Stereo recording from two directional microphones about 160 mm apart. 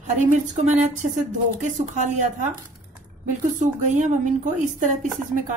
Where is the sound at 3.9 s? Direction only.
50° right (ahead or behind).